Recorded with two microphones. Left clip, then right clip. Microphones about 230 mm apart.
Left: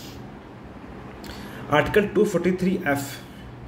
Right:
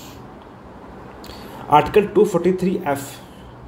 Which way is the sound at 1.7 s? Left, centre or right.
Centre.